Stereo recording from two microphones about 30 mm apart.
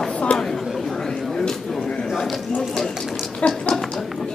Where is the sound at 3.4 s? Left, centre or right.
Left.